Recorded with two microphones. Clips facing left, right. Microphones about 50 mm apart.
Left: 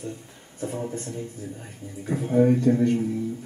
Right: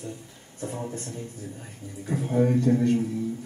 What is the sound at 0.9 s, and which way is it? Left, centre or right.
Speech, left.